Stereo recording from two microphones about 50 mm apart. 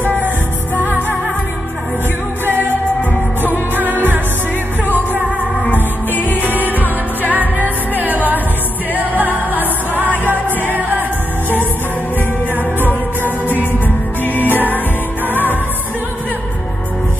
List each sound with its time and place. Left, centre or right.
0.7 s music: right
3.7 s music: right
5.7 s music: left
8.0 s music: right
13.5 s music: left